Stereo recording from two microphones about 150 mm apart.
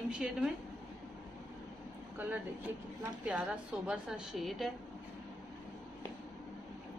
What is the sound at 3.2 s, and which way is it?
A woman's voice, 10° right (ahead or behind).